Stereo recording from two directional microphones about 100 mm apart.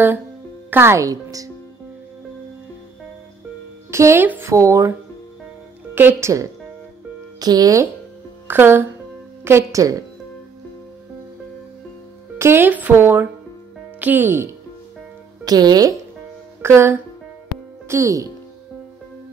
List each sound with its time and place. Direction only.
0.7 s speech: 25° right (ahead or behind)
3.9 s speech: 25° right (ahead or behind)
5.9 s speech: 25° right (ahead or behind)
7.3 s speech: 40° right (ahead or behind)
8.5 s speech: 20° right (ahead or behind)
12.4 s speech: 25° right (ahead or behind)
15.4 s speech: 40° right (ahead or behind)
16.6 s speech: 25° right (ahead or behind)